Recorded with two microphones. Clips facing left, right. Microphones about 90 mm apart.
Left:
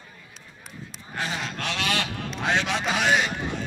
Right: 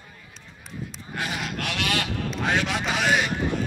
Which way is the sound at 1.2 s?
30° left (ahead or behind).